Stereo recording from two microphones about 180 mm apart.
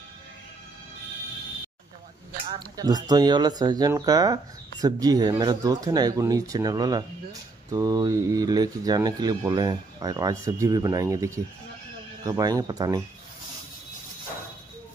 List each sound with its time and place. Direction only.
2.8 s speech: 20° right (ahead or behind)